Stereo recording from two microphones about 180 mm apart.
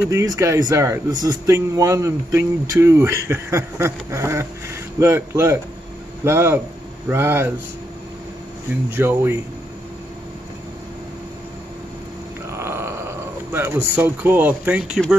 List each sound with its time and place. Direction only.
0.1 s a man's voice: 15° right (ahead or behind)
8.9 s a man's voice: 15° right (ahead or behind)
12.4 s a sound: 15° right (ahead or behind)